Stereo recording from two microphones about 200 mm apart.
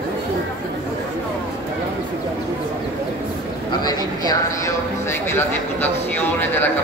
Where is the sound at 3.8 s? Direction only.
20° left (ahead or behind).